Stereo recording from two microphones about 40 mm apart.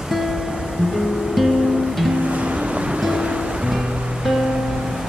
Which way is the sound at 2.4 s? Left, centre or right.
Right.